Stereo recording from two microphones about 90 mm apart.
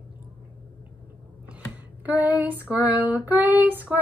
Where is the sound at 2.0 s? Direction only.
20° right (ahead or behind).